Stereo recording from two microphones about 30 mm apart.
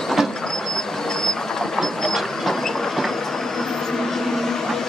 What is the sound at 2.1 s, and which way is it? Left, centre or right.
Train, centre.